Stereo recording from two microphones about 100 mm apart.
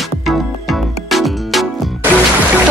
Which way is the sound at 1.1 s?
Centre (ahead or behind).